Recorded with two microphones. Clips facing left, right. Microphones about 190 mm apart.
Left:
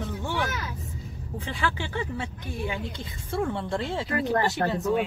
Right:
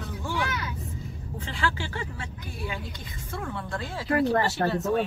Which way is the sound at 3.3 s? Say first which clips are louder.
Left 6 dB; 25° left (ahead or behind).